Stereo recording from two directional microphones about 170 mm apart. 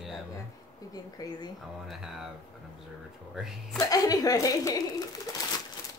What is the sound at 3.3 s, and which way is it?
Speech, centre (ahead or behind).